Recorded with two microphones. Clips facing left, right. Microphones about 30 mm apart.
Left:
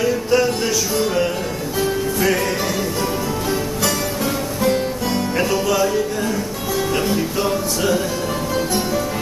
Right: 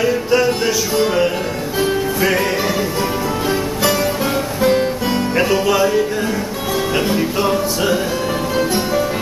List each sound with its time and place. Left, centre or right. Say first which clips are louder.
0.0 s music: right 2 dB; centre
4.6 s music: right 4 dB; centre